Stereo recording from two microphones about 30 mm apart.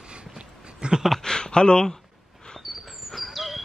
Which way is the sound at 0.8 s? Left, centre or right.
Right.